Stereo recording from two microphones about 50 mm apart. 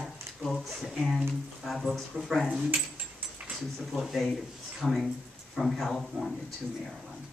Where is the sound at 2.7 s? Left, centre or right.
Right.